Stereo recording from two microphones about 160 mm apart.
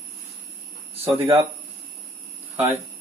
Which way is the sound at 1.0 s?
15° right (ahead or behind).